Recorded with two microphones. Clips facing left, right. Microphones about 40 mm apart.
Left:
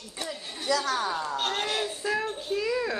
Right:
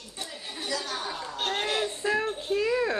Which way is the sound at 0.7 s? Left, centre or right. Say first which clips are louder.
Left 7 dB; left.